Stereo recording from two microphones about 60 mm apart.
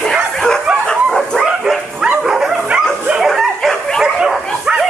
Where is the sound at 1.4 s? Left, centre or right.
Centre.